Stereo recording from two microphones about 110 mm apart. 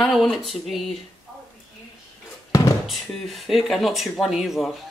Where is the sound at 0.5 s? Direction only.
Centre (ahead or behind).